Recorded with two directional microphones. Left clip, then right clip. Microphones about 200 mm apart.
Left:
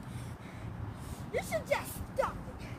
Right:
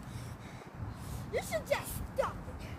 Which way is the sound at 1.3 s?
35° right (ahead or behind).